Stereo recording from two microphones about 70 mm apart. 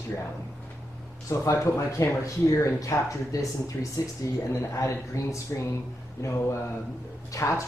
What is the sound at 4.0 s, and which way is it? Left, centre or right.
Speech, left.